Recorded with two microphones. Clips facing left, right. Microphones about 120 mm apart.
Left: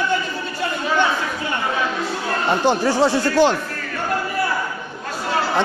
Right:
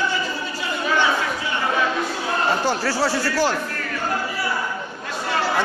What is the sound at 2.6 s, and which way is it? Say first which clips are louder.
Speech: left 5 dB; 20° left (ahead or behind).